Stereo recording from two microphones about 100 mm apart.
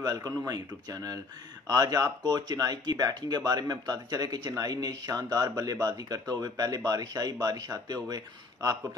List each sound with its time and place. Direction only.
0.0 s speech: 40° right (ahead or behind)